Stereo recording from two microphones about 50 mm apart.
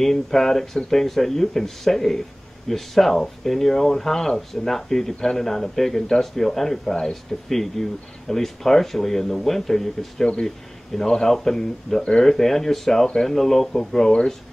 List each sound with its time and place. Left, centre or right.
0.0 s speech: centre